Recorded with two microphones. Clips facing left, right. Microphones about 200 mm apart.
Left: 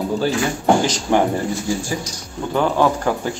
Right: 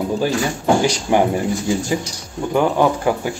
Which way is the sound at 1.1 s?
10° right (ahead or behind).